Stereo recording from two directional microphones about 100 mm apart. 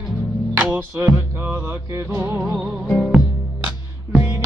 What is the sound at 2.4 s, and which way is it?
Music, 10° right (ahead or behind).